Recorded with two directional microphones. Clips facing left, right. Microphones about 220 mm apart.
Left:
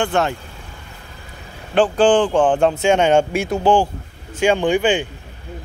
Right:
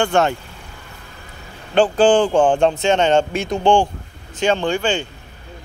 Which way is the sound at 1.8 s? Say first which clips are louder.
Even; centre (ahead or behind).